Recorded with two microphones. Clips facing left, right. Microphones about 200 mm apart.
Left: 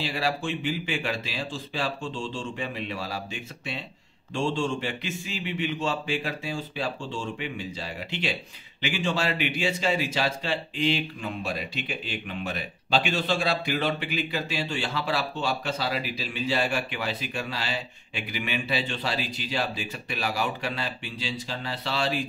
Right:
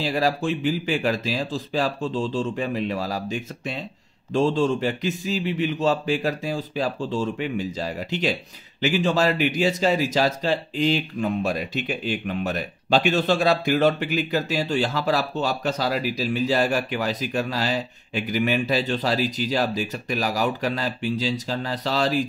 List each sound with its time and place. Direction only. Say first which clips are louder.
0.0 s a man's voice: right 6 dB; 40° right (ahead or behind)